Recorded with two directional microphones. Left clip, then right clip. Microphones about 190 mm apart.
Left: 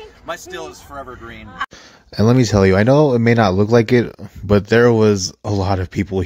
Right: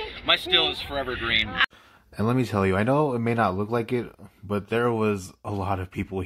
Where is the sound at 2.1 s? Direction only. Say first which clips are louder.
Left 10 dB; 35° left (ahead or behind).